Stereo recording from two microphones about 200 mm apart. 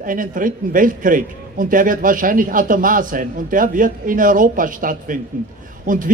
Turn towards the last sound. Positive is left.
turn(degrees=-40)  # may be behind; listen again after turning